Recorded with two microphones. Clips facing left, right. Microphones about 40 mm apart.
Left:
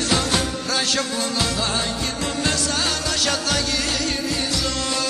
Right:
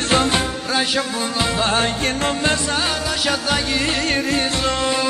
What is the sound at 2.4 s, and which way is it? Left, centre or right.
Music, right.